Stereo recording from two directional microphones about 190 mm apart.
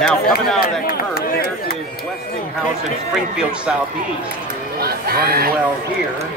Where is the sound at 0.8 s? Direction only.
55° left (ahead or behind).